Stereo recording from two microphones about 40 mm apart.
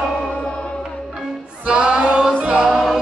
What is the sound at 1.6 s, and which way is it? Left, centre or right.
Music, right.